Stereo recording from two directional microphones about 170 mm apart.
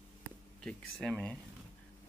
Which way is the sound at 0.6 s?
5° left (ahead or behind).